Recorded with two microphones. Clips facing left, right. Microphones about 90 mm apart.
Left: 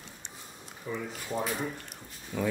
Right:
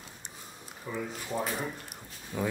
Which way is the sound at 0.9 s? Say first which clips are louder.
Left 1 dB; 10° right (ahead or behind).